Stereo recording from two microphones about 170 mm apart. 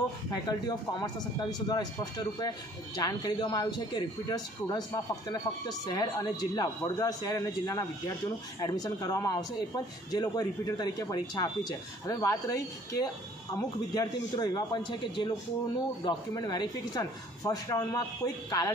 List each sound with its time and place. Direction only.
0.3 s speech: 25° left (ahead or behind)